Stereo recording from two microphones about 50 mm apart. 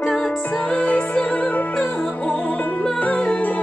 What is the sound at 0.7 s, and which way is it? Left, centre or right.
Music, left.